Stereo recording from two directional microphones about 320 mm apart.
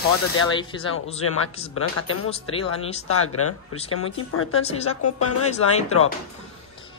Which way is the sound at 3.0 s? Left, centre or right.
Left.